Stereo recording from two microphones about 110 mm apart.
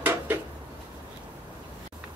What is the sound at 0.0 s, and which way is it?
Dishes, 20° right (ahead or behind).